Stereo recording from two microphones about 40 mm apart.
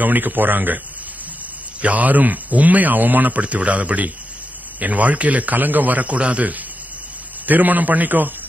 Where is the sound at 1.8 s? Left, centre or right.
Right.